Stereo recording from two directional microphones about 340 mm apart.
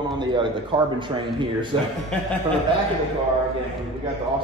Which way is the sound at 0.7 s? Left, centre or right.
Centre.